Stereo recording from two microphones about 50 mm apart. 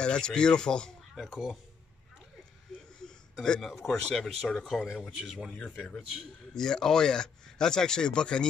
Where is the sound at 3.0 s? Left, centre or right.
Centre.